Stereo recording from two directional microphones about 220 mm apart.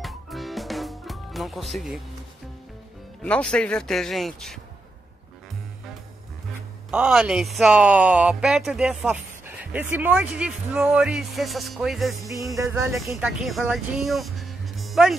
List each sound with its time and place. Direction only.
0.0 s music: centre (ahead or behind)
3.2 s speech: 5° left (ahead or behind)
6.9 s speech: 5° right (ahead or behind)
12.2 s music: 15° right (ahead or behind)
12.5 s speech: 15° right (ahead or behind)
13.1 s speech: centre (ahead or behind)